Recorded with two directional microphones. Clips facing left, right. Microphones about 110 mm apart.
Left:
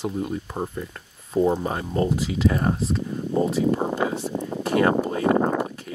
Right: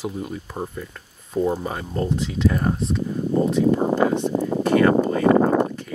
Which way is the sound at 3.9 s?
80° right.